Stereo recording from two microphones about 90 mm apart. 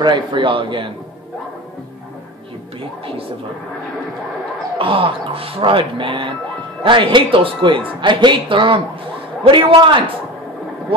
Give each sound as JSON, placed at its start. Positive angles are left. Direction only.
{"t": 0.0, "sound": "a man's voice", "side_deg": -60}
{"t": 4.7, "sound": "a woman's voice", "side_deg": -85}